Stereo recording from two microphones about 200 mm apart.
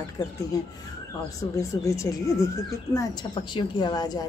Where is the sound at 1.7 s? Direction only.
15° left (ahead or behind).